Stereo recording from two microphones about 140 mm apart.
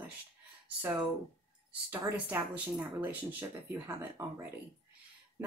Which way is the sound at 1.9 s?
15° right (ahead or behind).